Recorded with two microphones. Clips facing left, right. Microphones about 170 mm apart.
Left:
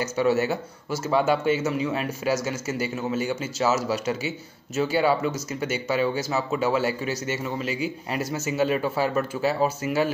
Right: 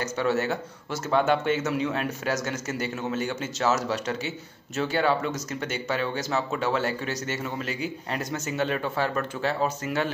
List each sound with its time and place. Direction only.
0.0 s speech: 10° left (ahead or behind)